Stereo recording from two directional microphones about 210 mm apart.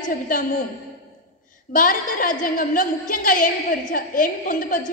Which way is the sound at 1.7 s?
40° left (ahead or behind).